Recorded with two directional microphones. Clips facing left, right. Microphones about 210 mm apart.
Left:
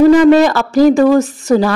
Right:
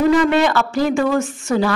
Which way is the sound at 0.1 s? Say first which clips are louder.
Left 7 dB; 40° left (ahead or behind).